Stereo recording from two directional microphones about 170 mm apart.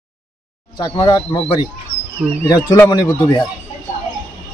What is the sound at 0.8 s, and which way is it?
Speech, 25° left (ahead or behind).